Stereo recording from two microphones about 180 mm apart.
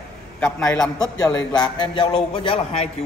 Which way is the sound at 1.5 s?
25° left (ahead or behind).